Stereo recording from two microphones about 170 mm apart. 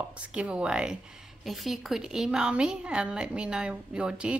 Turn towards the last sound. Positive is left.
turn(degrees=-5)  # may be behind; listen again after turning